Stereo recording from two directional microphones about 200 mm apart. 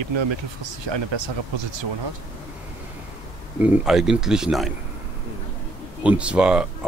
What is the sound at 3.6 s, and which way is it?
Speech, 5° right (ahead or behind).